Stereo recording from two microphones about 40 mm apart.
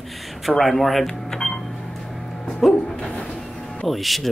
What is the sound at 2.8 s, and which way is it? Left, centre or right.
Bow-wow, centre.